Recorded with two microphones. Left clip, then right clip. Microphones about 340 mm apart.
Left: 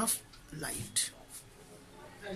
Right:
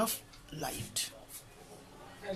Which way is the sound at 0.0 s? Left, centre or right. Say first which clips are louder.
Right 2 dB; centre.